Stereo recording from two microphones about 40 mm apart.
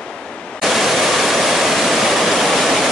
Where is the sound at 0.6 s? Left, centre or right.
Centre.